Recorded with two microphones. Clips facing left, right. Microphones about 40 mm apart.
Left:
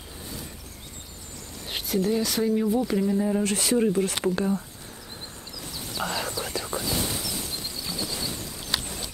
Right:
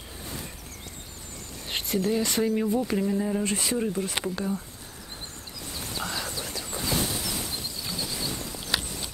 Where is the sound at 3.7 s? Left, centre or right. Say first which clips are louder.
Left 5 dB; centre.